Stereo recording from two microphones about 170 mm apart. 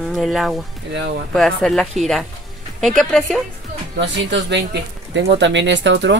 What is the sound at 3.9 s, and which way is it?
Speech, 90° right.